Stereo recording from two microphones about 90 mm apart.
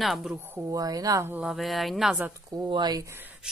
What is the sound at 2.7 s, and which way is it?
Speech, 50° right (ahead or behind).